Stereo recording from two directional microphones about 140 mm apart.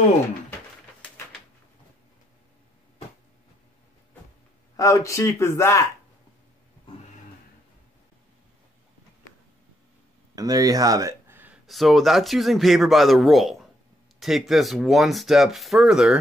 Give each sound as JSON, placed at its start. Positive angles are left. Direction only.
{"t": 4.7, "sound": "speech", "side_deg": 20}
{"t": 10.3, "sound": "a sound", "side_deg": -25}
{"t": 11.6, "sound": "speech", "side_deg": 0}